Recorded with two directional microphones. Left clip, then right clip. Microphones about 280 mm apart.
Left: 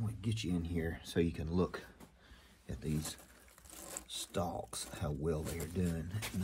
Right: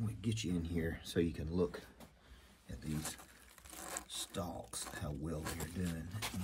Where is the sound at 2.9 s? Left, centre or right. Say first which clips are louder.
Even; centre.